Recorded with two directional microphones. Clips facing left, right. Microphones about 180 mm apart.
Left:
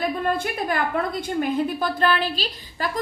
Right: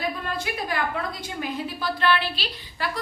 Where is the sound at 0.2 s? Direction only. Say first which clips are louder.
Left 6 dB; 50° left (ahead or behind).